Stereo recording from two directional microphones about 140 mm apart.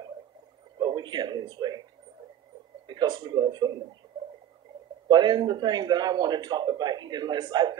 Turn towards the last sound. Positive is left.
turn(degrees=-30)  # may be behind; listen again after turning